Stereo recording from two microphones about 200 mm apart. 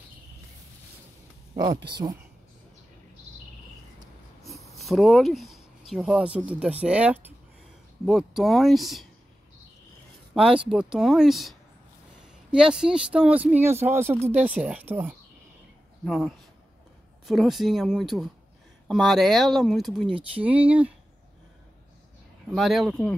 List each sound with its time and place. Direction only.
1.9 s speech: 20° right (ahead or behind)
4.6 s speech: centre (ahead or behind)
10.3 s speech: 5° right (ahead or behind)
20.1 s speech: 25° right (ahead or behind)
20.4 s speech: 5° right (ahead or behind)
22.5 s speech: centre (ahead or behind)